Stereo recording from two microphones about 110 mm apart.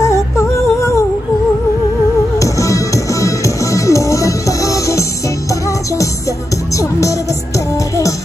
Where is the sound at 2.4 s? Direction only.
30° left (ahead or behind).